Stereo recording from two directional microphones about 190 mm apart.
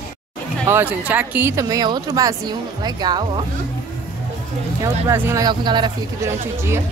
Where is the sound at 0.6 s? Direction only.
10° right (ahead or behind).